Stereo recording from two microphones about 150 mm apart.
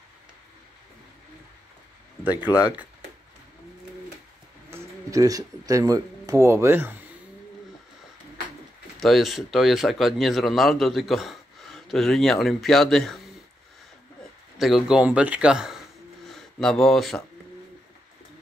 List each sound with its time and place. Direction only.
2.5 s speech: 10° right (ahead or behind)
4.6 s speech: 20° right (ahead or behind)
9.0 s a man's voice: centre (ahead or behind)
14.6 s a man's voice: centre (ahead or behind)